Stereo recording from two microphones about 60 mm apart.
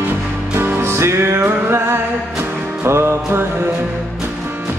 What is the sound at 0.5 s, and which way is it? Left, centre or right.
Music, right.